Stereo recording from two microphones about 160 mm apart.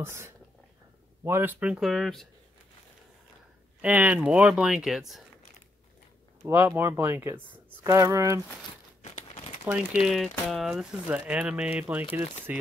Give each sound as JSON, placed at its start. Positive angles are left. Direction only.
{"t": 0.0, "sound": "speech", "side_deg": -15}
{"t": 3.8, "sound": "speech", "side_deg": -10}
{"t": 6.4, "sound": "speech", "side_deg": -15}
{"t": 9.0, "sound": "crumpling", "side_deg": 40}
{"t": 9.7, "sound": "speech", "side_deg": -5}